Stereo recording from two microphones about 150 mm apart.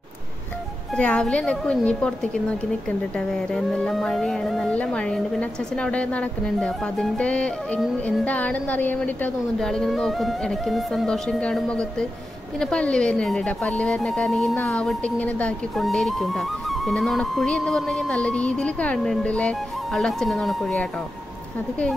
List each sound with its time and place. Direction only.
0.9 s a woman's voice: 5° left (ahead or behind)
3.2 s speech: 5° left (ahead or behind)